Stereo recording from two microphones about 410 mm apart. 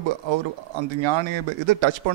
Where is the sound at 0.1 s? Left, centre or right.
Right.